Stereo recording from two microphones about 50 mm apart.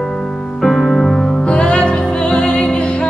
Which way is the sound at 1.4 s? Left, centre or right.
Left.